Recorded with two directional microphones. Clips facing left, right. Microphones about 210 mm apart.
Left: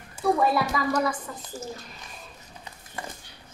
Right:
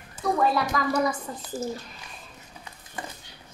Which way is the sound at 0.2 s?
5° left (ahead or behind).